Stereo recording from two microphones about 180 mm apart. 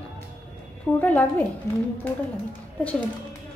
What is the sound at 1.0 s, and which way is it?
Speech, 10° left (ahead or behind).